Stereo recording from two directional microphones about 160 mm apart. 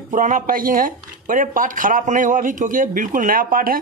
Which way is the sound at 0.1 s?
55° right (ahead or behind).